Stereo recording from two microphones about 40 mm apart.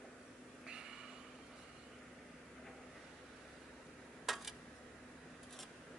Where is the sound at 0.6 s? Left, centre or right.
Centre.